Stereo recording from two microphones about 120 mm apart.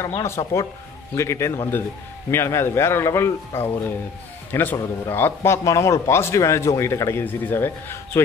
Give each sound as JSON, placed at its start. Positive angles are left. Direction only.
{"t": 0.2, "sound": "a man's voice", "side_deg": 25}